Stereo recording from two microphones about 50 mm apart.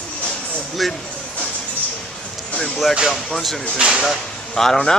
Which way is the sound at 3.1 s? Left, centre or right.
Centre.